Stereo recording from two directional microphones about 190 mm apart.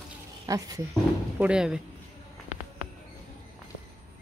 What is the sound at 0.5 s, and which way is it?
Speech, 20° right (ahead or behind).